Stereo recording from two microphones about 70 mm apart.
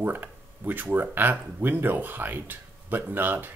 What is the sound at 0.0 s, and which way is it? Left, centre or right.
Speech, right.